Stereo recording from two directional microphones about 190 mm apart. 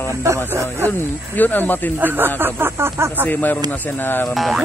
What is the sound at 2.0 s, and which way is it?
Speech, 10° right (ahead or behind).